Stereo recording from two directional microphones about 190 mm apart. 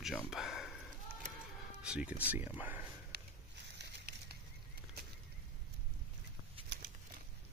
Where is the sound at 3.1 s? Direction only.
60° right (ahead or behind).